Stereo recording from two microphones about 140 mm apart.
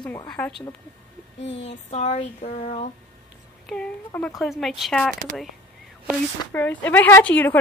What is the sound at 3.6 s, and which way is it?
A woman's voice, 5° left (ahead or behind).